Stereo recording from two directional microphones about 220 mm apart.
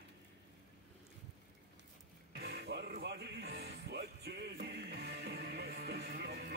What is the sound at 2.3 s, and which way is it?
Music, 45° right (ahead or behind).